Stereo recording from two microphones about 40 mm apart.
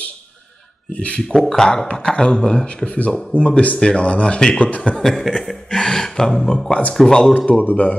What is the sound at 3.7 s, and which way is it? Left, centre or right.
A man's voice, left.